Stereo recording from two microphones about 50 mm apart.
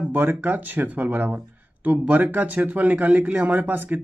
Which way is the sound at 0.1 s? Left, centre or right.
Right.